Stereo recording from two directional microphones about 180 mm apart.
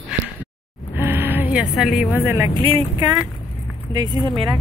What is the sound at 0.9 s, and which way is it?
Vehicle, 10° right (ahead or behind).